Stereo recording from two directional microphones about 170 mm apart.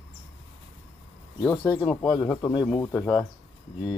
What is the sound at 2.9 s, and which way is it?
Speech, 5° left (ahead or behind).